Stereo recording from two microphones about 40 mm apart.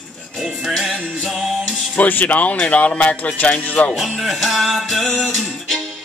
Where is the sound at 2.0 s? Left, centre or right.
Left.